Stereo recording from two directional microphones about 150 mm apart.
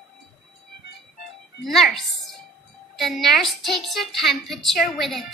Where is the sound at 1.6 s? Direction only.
Centre (ahead or behind).